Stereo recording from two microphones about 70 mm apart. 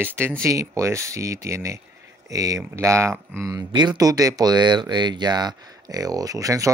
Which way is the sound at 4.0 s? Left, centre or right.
Right.